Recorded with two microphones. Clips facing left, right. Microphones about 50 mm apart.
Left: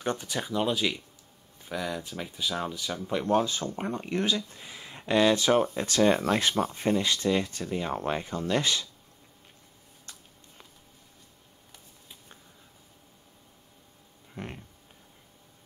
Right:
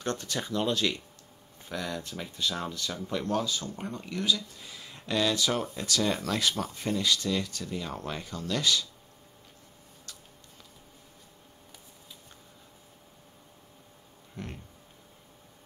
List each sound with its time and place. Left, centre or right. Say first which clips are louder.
0.0 s speech: left 2 dB; centre
3.1 s speech: left 5 dB; left
14.3 s a sound: left 2 dB; left